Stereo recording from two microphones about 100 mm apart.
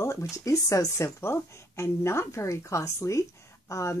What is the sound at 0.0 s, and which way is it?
Speech, 30° left (ahead or behind).